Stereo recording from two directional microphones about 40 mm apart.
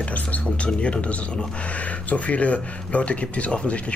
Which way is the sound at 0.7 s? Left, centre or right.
Left.